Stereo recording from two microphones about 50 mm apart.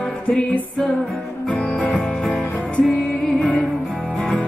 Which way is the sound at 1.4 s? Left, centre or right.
Centre.